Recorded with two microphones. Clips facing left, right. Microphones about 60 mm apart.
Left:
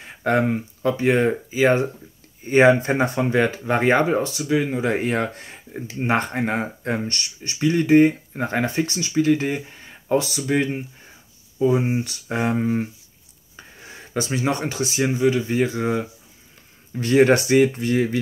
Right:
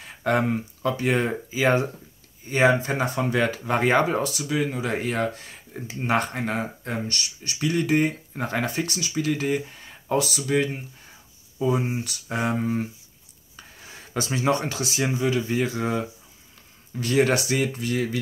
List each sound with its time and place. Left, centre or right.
0.0 s a sound: centre
0.9 s speech: centre
3.0 s speech: centre; by 7.5 s left
7.6 s speech: left
9.8 s a sound: centre
10.1 s speech: left
11.8 s speech: left
17.0 s speech: left